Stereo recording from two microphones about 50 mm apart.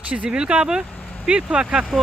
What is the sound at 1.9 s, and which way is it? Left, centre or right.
Speech, centre.